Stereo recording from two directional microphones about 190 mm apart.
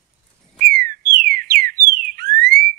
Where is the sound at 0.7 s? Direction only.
50° right (ahead or behind).